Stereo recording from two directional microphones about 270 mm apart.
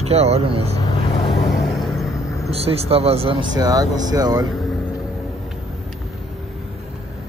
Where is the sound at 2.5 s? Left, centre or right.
Right.